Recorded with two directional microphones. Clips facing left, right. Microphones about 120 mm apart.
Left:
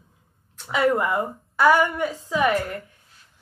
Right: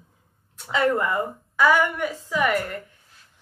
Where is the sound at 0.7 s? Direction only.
15° left (ahead or behind).